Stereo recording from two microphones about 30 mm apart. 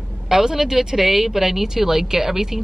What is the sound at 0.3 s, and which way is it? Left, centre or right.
Speech, centre.